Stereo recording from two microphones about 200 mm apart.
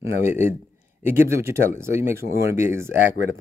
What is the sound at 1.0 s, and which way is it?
Speech, 10° right (ahead or behind).